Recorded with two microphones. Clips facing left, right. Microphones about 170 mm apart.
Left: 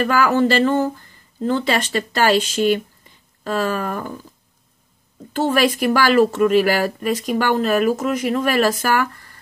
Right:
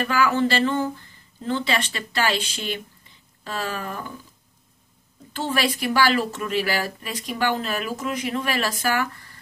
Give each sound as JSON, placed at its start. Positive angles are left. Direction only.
{"t": 0.0, "sound": "speech", "side_deg": 40}
{"t": 5.3, "sound": "speech", "side_deg": 45}